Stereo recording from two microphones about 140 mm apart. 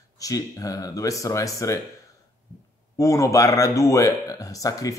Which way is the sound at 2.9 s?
20° left (ahead or behind).